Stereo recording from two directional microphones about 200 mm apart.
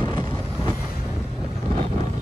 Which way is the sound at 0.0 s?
20° left (ahead or behind).